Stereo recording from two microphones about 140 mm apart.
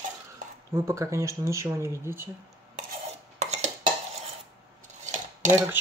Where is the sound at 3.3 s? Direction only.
55° right (ahead or behind).